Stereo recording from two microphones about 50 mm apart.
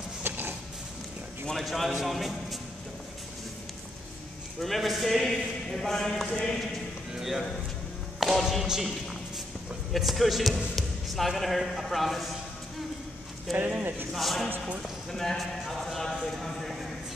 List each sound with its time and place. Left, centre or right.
0.2 s a sound: right
1.5 s speech: centre
4.6 s speech: centre
7.2 s music: centre
8.2 s speech: centre
9.9 s speech: centre
13.5 s speech: centre
15.7 s clip-clop: centre
16.3 s a sound: centre